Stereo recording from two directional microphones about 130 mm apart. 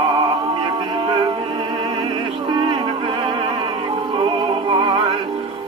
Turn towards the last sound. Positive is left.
turn(degrees=-40)  # may be behind; listen again after turning